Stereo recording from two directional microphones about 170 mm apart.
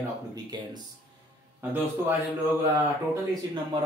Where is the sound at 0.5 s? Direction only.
25° right (ahead or behind).